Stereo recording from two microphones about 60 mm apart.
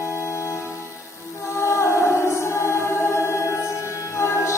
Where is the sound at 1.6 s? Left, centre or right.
Left.